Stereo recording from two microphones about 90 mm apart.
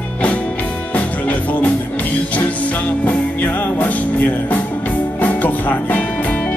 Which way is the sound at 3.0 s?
20° left (ahead or behind).